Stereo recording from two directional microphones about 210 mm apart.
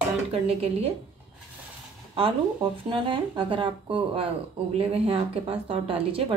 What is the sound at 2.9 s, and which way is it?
Speech, 25° right (ahead or behind).